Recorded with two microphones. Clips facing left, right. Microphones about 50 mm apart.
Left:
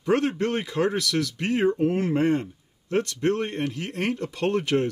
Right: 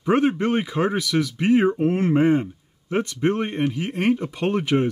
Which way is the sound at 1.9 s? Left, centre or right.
Right.